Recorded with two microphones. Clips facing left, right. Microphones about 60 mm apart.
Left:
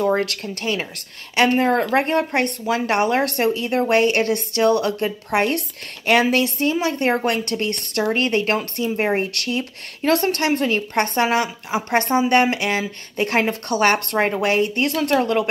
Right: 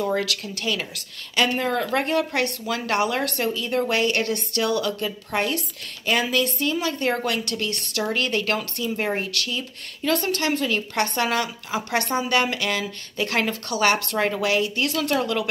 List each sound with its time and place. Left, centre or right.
0.0 s a woman's voice: left
3.9 s speech: left
6.2 s a woman's voice: left
12.5 s a sound: left
13.1 s a woman's voice: left